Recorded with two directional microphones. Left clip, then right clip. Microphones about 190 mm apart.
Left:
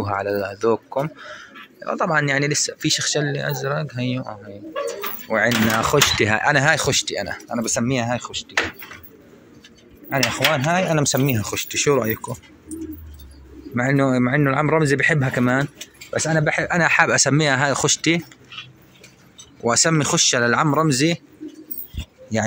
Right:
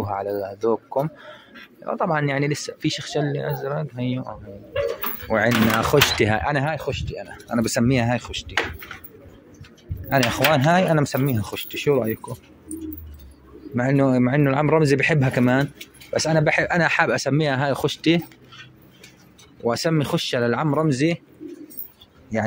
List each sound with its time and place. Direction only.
0.0 s speech: centre (ahead or behind)
1.0 s a man's voice: 15° right (ahead or behind)
6.7 s speech: 10° left (ahead or behind)
7.5 s speech: 30° right (ahead or behind)
10.5 s speech: 20° right (ahead or behind)
11.1 s speech: centre (ahead or behind)
13.7 s a man's voice: 5° right (ahead or behind)
16.2 s a man's voice: centre (ahead or behind)
19.6 s speech: 5° right (ahead or behind)